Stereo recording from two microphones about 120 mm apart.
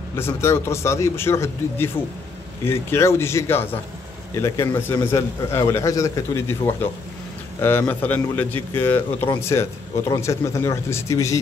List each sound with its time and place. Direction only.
0.1 s a man's voice: 20° left (ahead or behind)